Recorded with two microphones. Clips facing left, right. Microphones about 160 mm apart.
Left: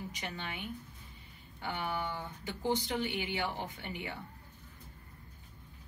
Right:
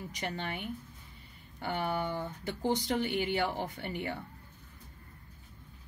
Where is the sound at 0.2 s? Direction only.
45° right (ahead or behind).